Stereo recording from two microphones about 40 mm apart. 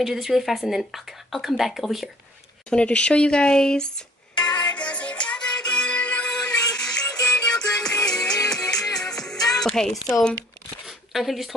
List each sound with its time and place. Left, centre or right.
0.0 s speech: centre
2.7 s speech: left
4.6 s music: left; by 9.7 s centre
9.8 s speech: centre
10.9 s a sound: centre